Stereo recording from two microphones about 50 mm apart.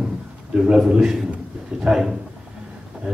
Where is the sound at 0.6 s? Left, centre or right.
Centre.